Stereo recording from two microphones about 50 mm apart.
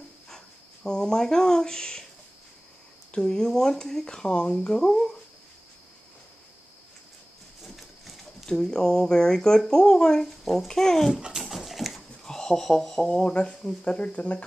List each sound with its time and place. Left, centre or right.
0.8 s speech: centre
3.1 s speech: centre
7.6 s a sound: centre
8.5 s speech: centre
10.4 s a child's voice: centre
10.7 s speech: centre
11.3 s dog: centre
12.3 s speech: centre